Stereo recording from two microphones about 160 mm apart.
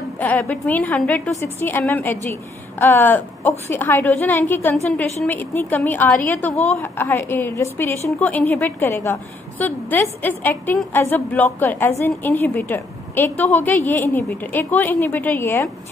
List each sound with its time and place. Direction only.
0.2 s a woman's voice: 5° left (ahead or behind)